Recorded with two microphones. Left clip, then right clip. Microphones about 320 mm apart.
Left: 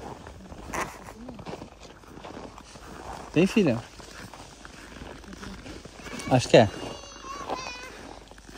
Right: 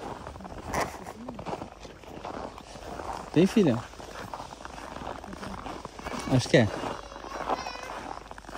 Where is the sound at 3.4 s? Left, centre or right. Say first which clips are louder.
Left 1 dB; centre.